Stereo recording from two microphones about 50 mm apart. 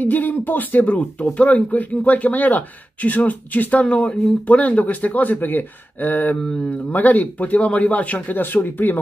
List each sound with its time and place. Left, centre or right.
0.0 s speech: left
4.0 s a man's voice: centre
4.5 s speech: left
6.4 s a man's voice: centre
6.9 s speech: left